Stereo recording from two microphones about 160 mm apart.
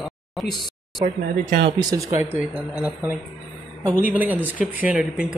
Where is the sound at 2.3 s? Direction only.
5° right (ahead or behind).